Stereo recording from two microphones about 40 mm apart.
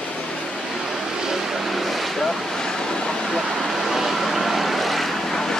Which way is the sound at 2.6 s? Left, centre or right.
Centre.